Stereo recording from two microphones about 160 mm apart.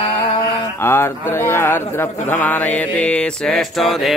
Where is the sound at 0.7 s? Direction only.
15° left (ahead or behind).